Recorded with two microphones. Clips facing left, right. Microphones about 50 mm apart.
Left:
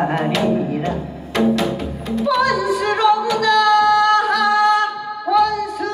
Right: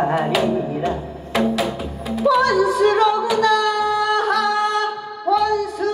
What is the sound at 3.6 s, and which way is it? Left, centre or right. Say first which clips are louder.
Music: left 6 dB; left.